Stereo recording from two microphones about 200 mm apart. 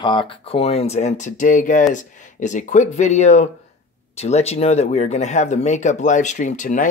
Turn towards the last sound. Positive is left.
turn(degrees=40)  # may be behind; listen again after turning